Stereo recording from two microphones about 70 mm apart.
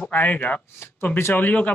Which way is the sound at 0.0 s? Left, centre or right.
Left.